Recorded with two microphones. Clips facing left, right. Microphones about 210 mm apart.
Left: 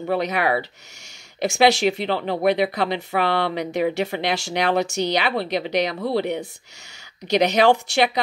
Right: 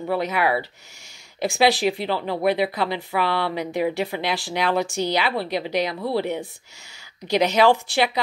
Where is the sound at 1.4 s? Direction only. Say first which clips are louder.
Left 2 dB; 70° left (ahead or behind).